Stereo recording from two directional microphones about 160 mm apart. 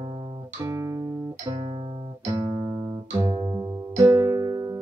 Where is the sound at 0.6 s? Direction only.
20° right (ahead or behind).